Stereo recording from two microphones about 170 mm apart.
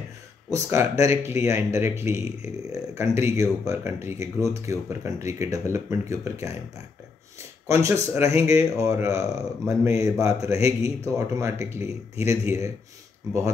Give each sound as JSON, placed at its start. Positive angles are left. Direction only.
{"t": 0.5, "sound": "speech", "side_deg": -20}
{"t": 7.6, "sound": "speech", "side_deg": -15}